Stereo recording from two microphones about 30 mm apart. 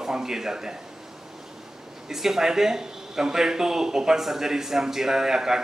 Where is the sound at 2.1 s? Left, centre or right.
Centre.